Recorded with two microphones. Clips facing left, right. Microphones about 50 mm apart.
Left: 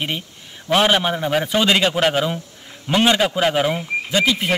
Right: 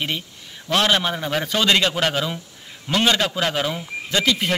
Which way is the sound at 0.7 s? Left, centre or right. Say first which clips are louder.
Left 3 dB; centre.